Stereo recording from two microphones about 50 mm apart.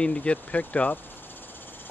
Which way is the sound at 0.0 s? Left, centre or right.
Left.